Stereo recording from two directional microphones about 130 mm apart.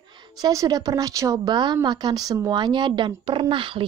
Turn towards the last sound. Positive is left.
turn(degrees=-40)  # may be behind; listen again after turning